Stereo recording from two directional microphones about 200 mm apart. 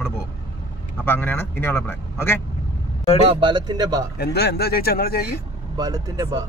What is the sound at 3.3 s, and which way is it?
Speech, 25° right (ahead or behind).